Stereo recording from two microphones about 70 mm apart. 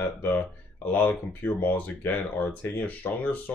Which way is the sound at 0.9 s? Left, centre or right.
Left.